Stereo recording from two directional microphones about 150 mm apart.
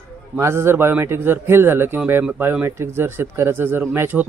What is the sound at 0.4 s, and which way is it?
Speech, 15° right (ahead or behind).